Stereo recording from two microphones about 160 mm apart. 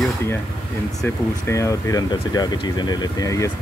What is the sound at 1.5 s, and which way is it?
Speech, 20° left (ahead or behind).